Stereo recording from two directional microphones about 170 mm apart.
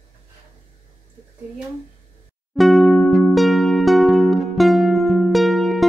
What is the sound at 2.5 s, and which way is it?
Music, centre (ahead or behind).